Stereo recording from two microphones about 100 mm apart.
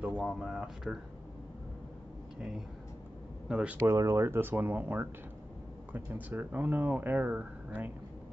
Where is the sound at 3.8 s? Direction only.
30° right (ahead or behind).